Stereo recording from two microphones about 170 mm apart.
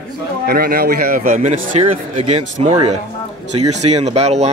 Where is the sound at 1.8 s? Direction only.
35° right (ahead or behind).